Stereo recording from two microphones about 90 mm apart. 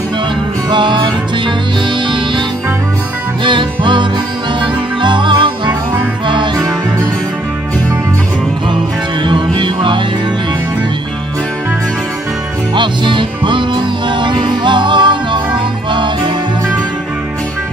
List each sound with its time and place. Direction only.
0.7 s music: 60° right (ahead or behind)
2.0 s music: 60° right (ahead or behind)
3.4 s music: 60° right (ahead or behind)
9.2 s music: 60° right (ahead or behind)
12.7 s music: 60° right (ahead or behind)